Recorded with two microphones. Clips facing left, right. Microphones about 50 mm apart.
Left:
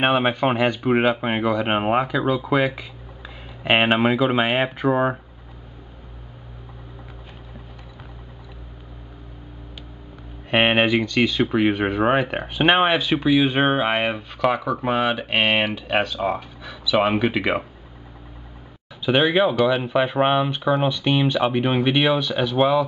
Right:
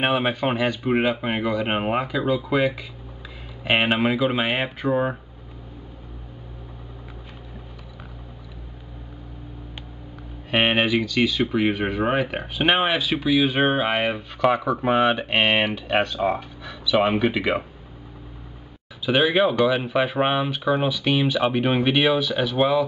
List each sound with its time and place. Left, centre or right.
0.0 s speech: centre
3.6 s speech: centre
10.5 s speech: centre
19.0 s speech: centre